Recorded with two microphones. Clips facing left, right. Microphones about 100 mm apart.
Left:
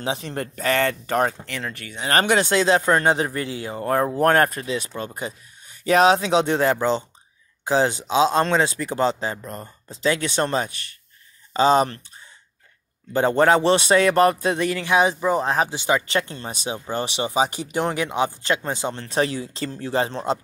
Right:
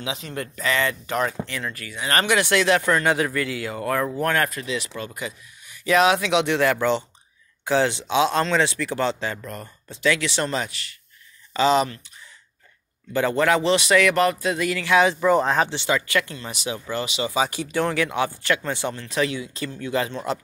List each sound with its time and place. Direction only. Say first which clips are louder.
0.0 s speech: left 3 dB; 40° left (ahead or behind)
2.5 s speech: left 1 dB; 25° left (ahead or behind); by 12.0 s 40° left (ahead or behind)
13.1 s speech: left 3 dB; 30° left (ahead or behind)